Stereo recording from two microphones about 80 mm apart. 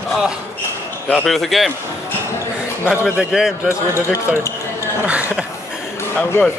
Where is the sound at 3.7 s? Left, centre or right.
Left.